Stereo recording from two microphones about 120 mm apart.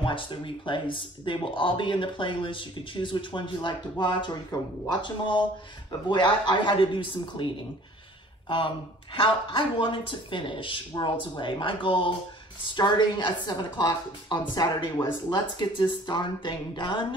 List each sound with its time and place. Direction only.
0.0 s a woman's voice: 45° left (ahead or behind)